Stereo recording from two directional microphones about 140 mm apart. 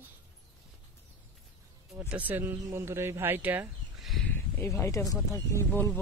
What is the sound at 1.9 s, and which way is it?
Speech, 10° right (ahead or behind).